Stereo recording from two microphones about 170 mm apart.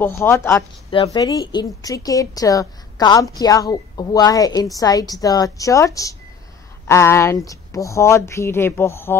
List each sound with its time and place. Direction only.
0.0 s a woman's voice: 15° left (ahead or behind)